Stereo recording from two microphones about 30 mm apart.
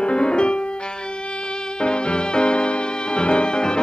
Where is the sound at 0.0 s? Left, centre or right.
Left.